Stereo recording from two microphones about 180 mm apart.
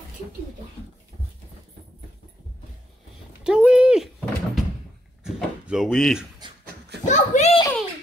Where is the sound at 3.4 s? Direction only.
5° right (ahead or behind).